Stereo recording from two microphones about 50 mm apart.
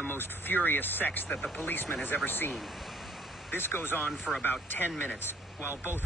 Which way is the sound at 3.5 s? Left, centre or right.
Left.